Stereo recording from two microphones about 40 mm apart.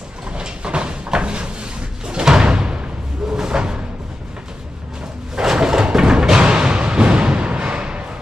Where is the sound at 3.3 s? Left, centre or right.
Centre.